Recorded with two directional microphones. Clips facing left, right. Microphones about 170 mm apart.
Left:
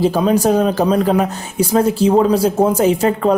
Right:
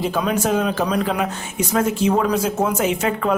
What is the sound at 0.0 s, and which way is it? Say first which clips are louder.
Speech: left 7 dB; 35° left (ahead or behind).